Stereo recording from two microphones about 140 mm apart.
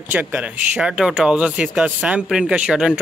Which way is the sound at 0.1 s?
10° right (ahead or behind).